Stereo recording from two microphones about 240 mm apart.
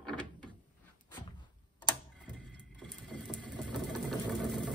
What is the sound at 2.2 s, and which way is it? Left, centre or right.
Vehicle, centre.